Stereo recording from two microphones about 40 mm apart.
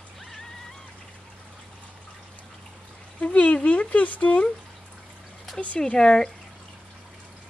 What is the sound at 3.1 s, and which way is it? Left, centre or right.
Speech, left.